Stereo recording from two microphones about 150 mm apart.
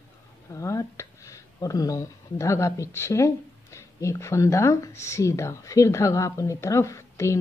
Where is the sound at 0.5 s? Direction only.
20° left (ahead or behind).